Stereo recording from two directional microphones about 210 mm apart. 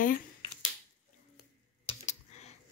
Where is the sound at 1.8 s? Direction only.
30° left (ahead or behind).